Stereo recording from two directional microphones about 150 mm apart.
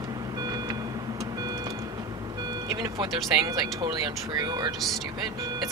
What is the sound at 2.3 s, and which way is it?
Speech, 25° right (ahead or behind).